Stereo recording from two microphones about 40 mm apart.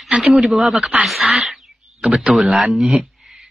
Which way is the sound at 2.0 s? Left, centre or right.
Right.